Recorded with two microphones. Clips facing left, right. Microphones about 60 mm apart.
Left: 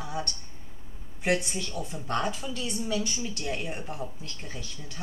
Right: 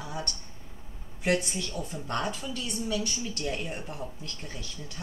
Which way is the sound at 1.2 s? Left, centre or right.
Centre.